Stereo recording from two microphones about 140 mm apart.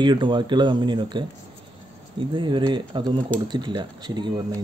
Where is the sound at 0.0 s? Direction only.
35° right (ahead or behind).